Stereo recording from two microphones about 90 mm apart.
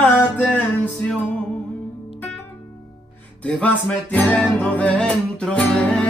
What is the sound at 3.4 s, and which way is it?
Music, 15° left (ahead or behind).